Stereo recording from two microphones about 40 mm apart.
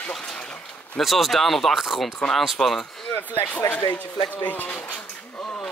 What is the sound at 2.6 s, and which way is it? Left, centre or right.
Speech, centre.